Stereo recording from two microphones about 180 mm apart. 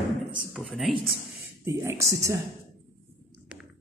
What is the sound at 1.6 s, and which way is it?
Speech, 15° right (ahead or behind).